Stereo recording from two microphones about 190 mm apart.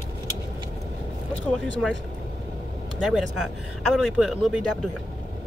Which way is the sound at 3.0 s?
Centre (ahead or behind).